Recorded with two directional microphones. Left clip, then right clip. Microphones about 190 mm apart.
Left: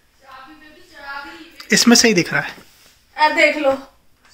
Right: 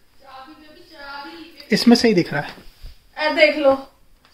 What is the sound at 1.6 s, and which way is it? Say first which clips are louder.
Speech: left 3 dB; 10° right (ahead or behind).